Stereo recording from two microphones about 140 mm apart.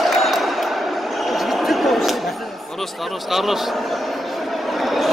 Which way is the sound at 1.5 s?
Centre (ahead or behind).